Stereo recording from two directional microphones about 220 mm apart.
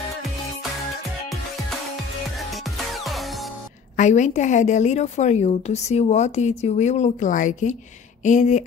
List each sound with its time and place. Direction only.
3.0 s music: centre (ahead or behind)
3.9 s a woman's voice: 35° left (ahead or behind)